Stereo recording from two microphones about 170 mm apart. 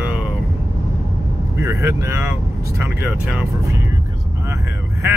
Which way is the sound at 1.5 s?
15° right (ahead or behind).